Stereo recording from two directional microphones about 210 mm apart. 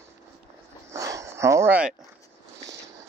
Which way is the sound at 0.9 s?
15° right (ahead or behind).